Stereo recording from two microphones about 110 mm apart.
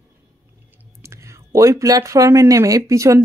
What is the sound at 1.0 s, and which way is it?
Speech, 25° right (ahead or behind).